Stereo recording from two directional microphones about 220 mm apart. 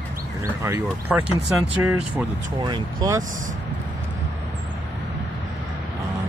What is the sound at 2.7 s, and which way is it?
Speech, 20° right (ahead or behind).